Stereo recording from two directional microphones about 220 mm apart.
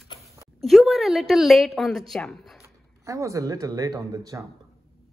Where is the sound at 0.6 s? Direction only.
Centre (ahead or behind).